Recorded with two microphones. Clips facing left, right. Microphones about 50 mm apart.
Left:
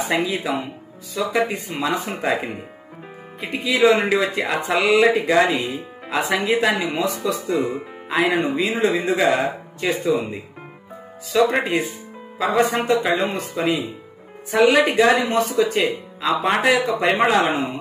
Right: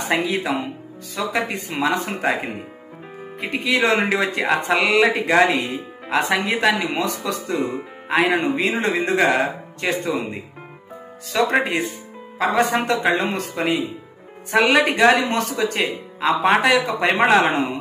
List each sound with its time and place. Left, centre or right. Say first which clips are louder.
0.1 s speech: right 3 dB; right
11.3 s speech: left 1 dB; right
12.4 s speech: even; right
14.5 s speech: left 1 dB; right
15.4 s speech: left 3 dB; right